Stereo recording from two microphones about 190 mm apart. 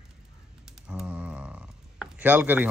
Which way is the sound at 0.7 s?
5° right (ahead or behind).